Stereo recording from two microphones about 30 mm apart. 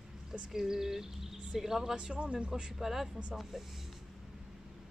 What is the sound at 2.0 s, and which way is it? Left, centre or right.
Speech, right.